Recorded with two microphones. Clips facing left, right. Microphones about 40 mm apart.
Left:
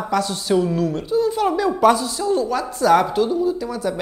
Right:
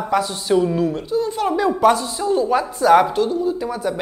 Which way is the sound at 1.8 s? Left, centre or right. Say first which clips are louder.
Left 2 dB; centre.